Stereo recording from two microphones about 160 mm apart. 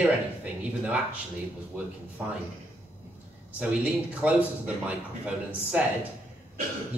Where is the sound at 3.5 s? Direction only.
5° right (ahead or behind).